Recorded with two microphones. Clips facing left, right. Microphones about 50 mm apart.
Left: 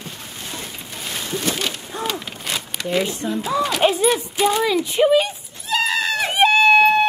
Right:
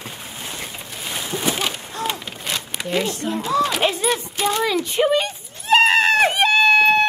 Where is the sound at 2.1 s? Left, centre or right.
Centre.